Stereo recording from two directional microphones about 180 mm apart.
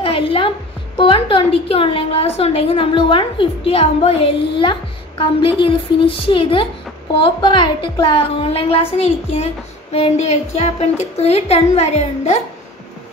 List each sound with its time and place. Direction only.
0.0 s music: 30° left (ahead or behind)
0.9 s a woman's voice: 30° left (ahead or behind)